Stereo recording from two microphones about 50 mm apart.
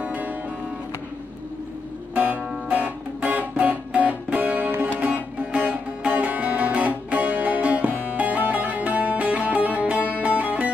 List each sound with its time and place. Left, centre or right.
0.0 s music: right
2.1 s music: right